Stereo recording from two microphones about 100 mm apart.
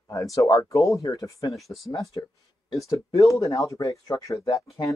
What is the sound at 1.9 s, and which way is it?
Speech, 35° left (ahead or behind).